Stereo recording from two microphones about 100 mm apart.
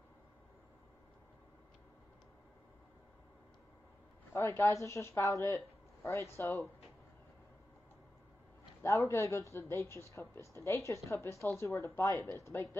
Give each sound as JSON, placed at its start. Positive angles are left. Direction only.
{"t": 4.3, "sound": "speech", "side_deg": 25}
{"t": 8.8, "sound": "speech", "side_deg": 25}